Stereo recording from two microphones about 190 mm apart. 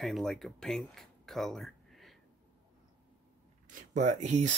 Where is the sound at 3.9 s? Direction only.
40° right (ahead or behind).